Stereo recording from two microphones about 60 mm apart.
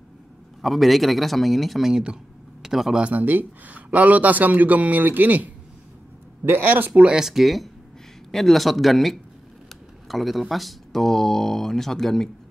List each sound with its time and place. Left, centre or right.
0.6 s speech: centre
3.0 s speech: right
6.9 s speech: centre